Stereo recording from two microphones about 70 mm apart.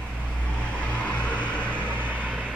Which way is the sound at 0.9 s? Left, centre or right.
Centre.